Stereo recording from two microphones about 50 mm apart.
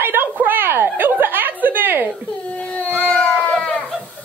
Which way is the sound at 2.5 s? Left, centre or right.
Left.